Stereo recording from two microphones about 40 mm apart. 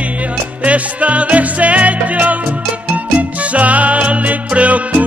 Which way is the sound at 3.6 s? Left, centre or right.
Right.